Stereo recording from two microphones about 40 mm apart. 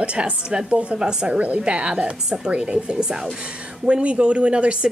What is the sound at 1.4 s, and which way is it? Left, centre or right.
A woman's voice, right.